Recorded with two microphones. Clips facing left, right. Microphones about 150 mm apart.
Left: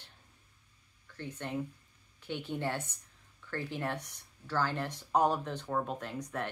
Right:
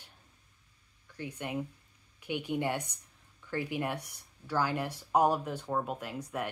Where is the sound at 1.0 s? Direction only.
10° right (ahead or behind).